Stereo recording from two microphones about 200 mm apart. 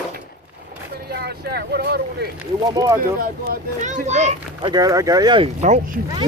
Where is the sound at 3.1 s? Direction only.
45° right (ahead or behind).